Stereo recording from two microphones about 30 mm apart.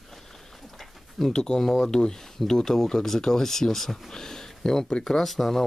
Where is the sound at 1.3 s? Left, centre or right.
Left.